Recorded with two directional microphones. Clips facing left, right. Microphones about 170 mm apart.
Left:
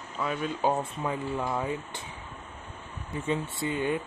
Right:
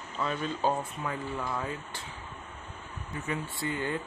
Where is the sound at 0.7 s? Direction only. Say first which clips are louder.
Left 3 dB; 20° left (ahead or behind).